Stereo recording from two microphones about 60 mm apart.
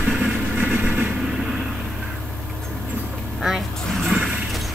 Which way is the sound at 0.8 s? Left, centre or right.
Right.